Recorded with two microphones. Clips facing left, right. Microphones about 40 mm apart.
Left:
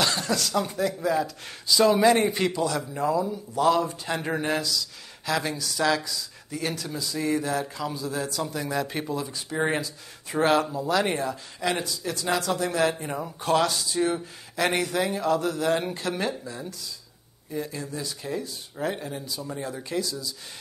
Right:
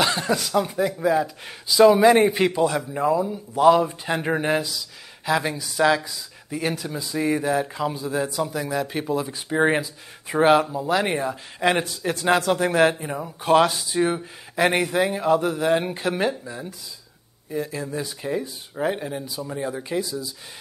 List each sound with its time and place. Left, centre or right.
0.0 s speech: centre
8.5 s speech: centre
9.3 s speech: right
11.6 s speech: right
12.9 s speech: centre
13.5 s speech: right
17.9 s speech: right